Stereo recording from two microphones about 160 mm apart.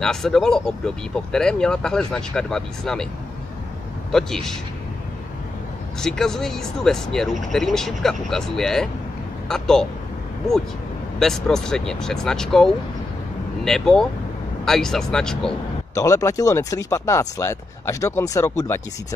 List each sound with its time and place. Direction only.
0.0 s speech: 5° left (ahead or behind)
4.1 s speech: 5° left (ahead or behind)
5.9 s speech: 5° left (ahead or behind)
11.1 s speech: centre (ahead or behind)
13.7 s speech: 5° left (ahead or behind)
15.9 s speech: 20° left (ahead or behind)